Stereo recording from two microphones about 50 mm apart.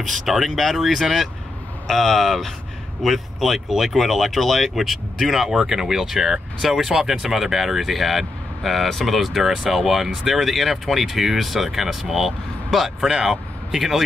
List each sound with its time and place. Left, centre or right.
0.0 s speech: centre